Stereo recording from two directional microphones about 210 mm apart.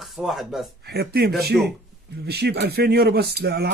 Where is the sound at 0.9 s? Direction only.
50° right (ahead or behind).